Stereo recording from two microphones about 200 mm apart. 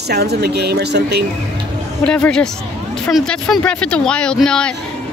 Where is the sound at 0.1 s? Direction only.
55° right (ahead or behind).